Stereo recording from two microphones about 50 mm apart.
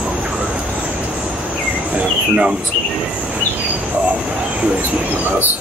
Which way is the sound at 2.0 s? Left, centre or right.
Right.